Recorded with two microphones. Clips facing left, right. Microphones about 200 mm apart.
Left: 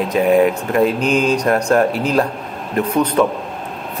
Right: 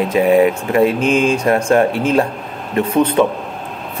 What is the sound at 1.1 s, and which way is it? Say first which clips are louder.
Speech: right 1 dB; 40° left (ahead or behind).